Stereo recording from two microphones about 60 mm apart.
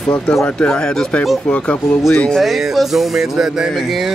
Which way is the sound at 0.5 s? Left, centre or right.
Centre.